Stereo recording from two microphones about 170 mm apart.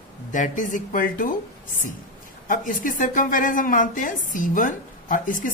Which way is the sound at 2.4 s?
50° left (ahead or behind).